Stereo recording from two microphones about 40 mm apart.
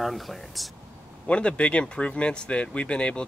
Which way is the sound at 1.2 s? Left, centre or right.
Left.